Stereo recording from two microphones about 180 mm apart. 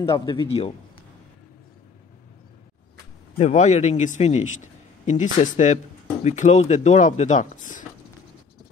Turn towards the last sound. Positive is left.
turn(degrees=45)  # may be behind; listen again after turning